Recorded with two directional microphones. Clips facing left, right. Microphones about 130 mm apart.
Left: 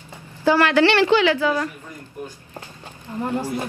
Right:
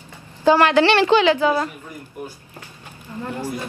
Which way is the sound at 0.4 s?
20° right (ahead or behind).